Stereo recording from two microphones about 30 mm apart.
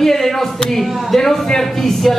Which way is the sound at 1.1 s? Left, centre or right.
Centre.